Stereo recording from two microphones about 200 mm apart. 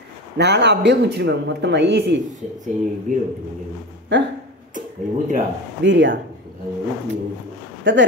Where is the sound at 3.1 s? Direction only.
40° right (ahead or behind).